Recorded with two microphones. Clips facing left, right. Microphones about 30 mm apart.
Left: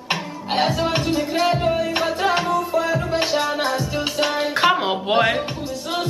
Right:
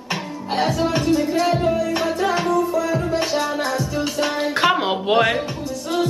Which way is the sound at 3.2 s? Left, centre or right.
Centre.